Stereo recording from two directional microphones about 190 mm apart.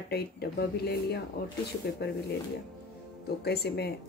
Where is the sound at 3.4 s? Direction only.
55° left (ahead or behind).